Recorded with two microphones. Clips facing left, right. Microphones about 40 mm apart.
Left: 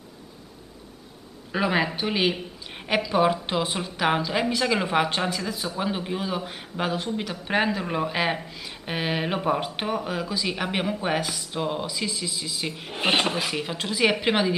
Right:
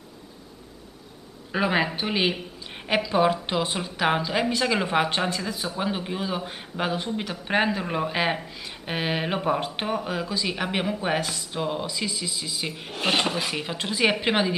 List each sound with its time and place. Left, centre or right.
1.5 s a woman's voice: centre
12.9 s speech: centre
13.2 s a woman's voice: centre